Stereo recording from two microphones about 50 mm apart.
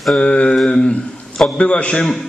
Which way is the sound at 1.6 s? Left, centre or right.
Left.